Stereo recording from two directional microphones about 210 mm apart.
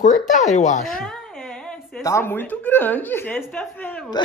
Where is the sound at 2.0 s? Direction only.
10° left (ahead or behind).